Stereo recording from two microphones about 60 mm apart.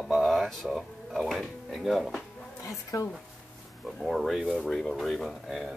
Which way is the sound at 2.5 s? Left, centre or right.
Left.